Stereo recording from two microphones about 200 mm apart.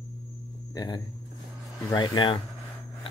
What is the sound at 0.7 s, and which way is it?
Speech, 20° left (ahead or behind).